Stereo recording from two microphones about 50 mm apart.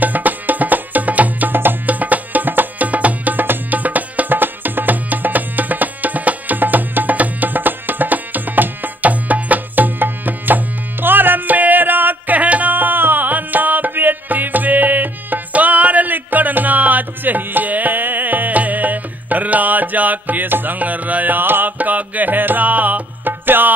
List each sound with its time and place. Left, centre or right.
0.0 s music: right